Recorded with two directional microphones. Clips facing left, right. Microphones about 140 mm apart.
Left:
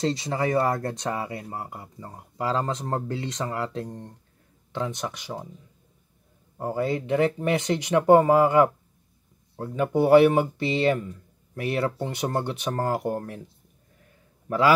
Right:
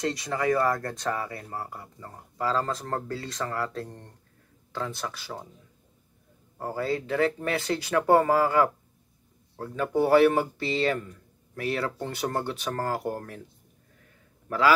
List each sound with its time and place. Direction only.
0.0 s speech: 25° left (ahead or behind)
6.6 s speech: 20° left (ahead or behind)